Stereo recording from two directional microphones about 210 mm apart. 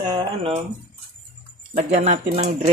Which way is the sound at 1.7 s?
30° right (ahead or behind).